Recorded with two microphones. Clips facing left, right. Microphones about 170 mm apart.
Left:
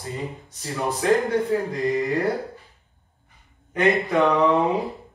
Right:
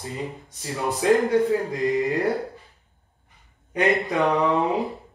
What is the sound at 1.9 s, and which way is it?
Music, 20° right (ahead or behind).